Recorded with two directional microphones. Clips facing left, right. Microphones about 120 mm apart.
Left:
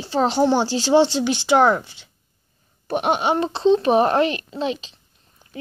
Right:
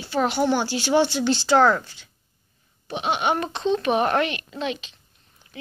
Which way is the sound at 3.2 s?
30° left (ahead or behind).